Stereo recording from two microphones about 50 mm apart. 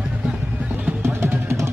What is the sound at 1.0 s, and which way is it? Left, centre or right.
Music, right.